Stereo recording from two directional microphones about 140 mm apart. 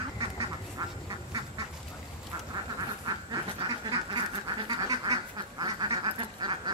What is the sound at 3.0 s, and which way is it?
Duck, 30° right (ahead or behind).